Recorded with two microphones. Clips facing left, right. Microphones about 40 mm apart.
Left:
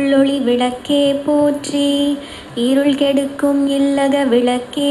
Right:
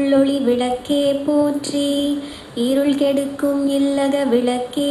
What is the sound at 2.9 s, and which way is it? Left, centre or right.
A woman's voice, left.